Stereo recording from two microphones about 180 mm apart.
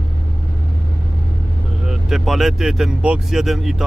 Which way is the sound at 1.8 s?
Centre (ahead or behind).